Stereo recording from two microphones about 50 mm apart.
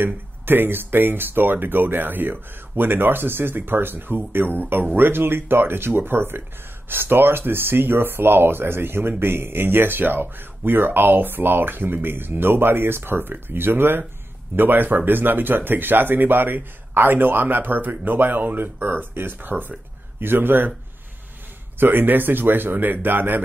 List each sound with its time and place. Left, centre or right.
0.0 s speech: right
21.7 s speech: right